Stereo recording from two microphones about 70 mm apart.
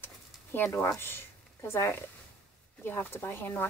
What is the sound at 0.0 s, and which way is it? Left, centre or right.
Bird, left.